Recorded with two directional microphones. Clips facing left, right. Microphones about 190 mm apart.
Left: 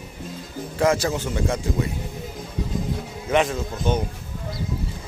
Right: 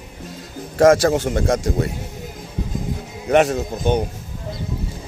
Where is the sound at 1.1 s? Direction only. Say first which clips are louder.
Right 6 dB; 50° right (ahead or behind).